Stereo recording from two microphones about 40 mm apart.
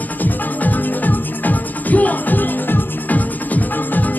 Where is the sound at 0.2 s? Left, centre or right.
Left.